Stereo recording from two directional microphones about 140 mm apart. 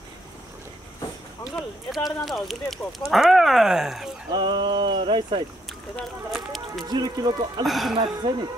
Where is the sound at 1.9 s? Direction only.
Centre (ahead or behind).